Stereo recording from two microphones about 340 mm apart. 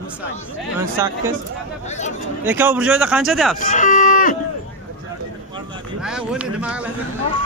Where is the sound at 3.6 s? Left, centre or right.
Left.